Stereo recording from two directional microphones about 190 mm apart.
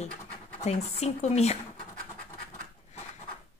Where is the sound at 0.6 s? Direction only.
35° left (ahead or behind).